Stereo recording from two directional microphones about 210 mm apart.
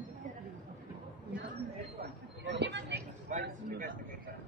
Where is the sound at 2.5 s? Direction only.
55° right (ahead or behind).